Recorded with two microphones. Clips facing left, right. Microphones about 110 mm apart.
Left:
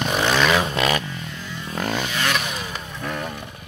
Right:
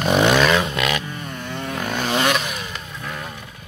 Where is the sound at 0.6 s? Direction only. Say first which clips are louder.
Left 1 dB; 30° left (ahead or behind).